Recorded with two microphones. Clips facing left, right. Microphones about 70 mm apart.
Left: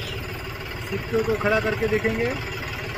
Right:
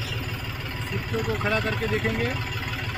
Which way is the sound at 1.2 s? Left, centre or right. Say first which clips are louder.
Left 3 dB; centre.